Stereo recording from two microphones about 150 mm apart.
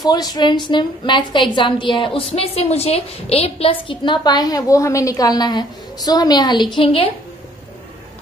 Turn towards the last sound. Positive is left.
turn(degrees=35)  # may be behind; listen again after turning